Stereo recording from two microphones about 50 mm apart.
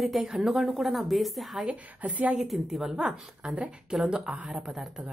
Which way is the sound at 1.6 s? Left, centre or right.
Right.